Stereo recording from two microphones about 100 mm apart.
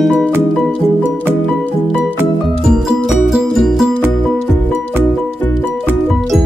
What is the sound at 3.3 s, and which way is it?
Music, centre (ahead or behind).